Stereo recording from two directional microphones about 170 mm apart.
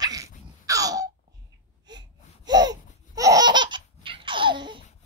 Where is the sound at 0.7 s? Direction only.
20° right (ahead or behind).